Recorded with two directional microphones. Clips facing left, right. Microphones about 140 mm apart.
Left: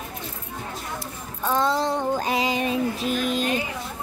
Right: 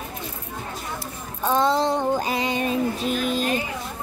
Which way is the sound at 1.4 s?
20° right (ahead or behind).